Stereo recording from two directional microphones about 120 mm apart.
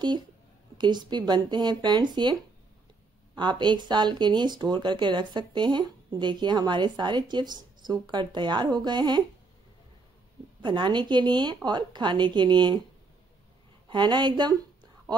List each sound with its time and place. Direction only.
0.7 s speech: 40° right (ahead or behind)
3.3 s speech: 40° right (ahead or behind)
10.6 s speech: 40° right (ahead or behind)
13.8 s speech: 40° right (ahead or behind)